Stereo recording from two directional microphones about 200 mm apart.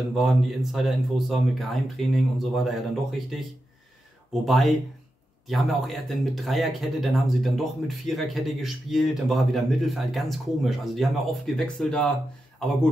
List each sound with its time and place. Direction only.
0.2 s speech: centre (ahead or behind)